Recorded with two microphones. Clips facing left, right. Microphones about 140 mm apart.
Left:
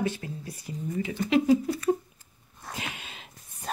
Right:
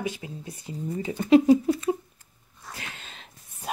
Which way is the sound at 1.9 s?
5° right (ahead or behind).